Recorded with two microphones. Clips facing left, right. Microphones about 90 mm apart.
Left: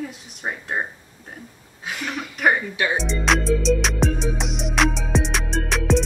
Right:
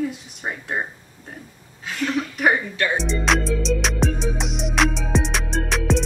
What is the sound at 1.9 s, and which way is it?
Speech, 15° left (ahead or behind).